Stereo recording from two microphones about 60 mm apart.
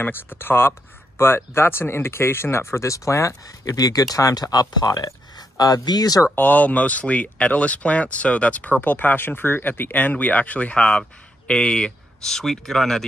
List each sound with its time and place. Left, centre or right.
0.0 s speech: left
6.3 s speech: left; by 13.0 s centre